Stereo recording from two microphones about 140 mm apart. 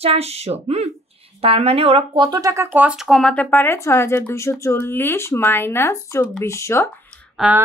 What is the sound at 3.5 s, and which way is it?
Speech, 20° left (ahead or behind).